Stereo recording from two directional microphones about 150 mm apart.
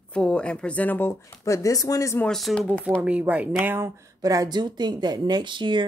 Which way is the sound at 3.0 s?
10° right (ahead or behind).